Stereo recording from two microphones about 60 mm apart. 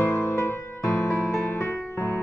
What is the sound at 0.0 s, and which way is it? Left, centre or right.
Music, left.